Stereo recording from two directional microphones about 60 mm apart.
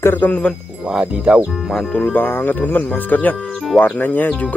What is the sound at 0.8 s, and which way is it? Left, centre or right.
Speech, centre.